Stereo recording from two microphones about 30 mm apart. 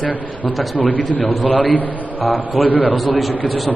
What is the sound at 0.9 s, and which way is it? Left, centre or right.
A man's voice, left.